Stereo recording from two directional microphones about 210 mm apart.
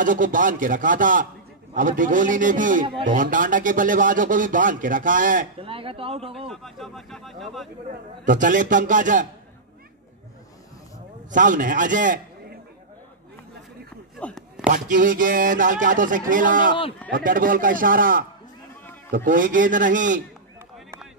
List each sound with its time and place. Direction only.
0.0 s a man's voice: 40° right (ahead or behind)
5.6 s speech: 25° right (ahead or behind)
6.5 s speech: centre (ahead or behind)
7.9 s a man's voice: 40° right (ahead or behind)
11.2 s a man's voice: 40° right (ahead or behind)
14.2 s speech: 5° left (ahead or behind)
14.7 s a man's voice: 40° right (ahead or behind)